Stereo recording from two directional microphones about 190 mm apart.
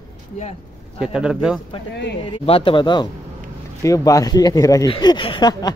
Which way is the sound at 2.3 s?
30° left (ahead or behind).